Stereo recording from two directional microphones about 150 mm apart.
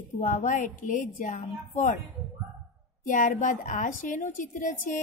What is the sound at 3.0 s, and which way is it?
Speech, 60° left (ahead or behind).